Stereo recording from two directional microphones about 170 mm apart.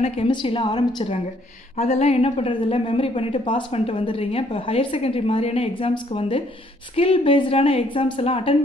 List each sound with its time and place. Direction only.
0.0 s a woman's voice: 35° left (ahead or behind)